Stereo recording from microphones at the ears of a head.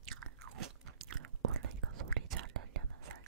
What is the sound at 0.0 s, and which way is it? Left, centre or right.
Chewing, right.